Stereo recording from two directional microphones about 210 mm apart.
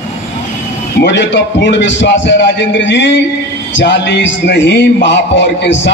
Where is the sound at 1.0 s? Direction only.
55° left (ahead or behind).